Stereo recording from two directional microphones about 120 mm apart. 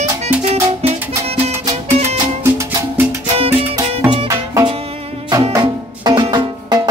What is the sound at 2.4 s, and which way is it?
Music, 20° right (ahead or behind).